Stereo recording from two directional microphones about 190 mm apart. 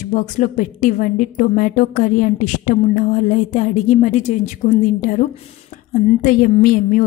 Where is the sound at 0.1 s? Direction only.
40° left (ahead or behind).